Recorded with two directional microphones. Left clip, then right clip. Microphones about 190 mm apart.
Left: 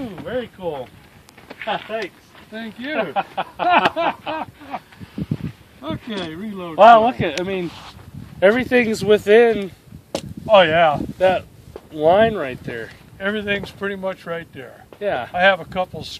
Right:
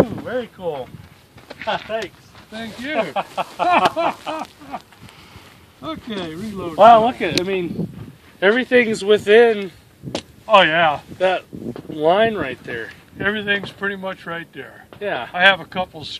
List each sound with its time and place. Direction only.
0.2 s speech: 5° left (ahead or behind)
8.4 s speech: 55° left (ahead or behind)